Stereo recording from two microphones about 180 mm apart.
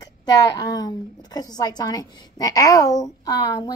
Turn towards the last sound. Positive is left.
turn(degrees=20)  # may be behind; listen again after turning